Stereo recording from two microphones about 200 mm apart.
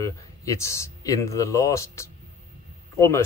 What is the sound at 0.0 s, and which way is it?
Speech, 15° left (ahead or behind).